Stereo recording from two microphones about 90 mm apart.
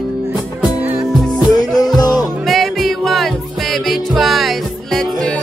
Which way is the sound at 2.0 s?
45° left (ahead or behind).